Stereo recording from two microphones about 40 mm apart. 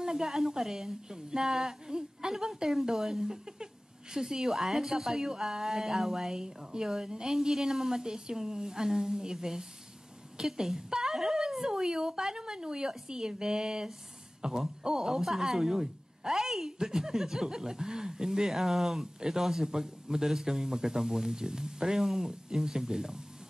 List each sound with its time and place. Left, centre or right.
0.0 s speech: centre